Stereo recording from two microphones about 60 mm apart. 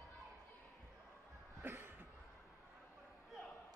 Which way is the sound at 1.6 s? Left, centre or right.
Right.